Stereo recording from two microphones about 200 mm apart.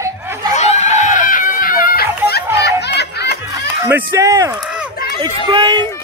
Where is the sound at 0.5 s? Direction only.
35° left (ahead or behind); by 3.3 s 55° left (ahead or behind).